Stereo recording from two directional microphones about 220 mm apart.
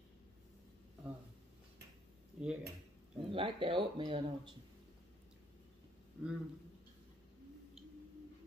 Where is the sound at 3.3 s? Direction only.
25° right (ahead or behind).